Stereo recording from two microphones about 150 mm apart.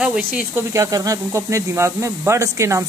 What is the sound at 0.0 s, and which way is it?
Speech, 5° right (ahead or behind).